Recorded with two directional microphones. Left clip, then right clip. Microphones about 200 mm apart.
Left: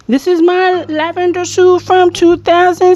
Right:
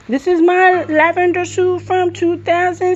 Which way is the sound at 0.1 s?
30° left (ahead or behind).